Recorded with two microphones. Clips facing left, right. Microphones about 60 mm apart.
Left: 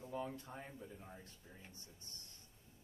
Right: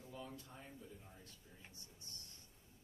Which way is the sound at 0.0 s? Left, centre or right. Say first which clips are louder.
Left 8 dB; left.